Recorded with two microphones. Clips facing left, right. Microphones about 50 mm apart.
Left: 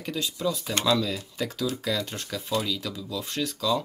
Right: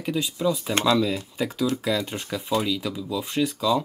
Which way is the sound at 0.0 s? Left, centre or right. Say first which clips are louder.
Right 4 dB; centre.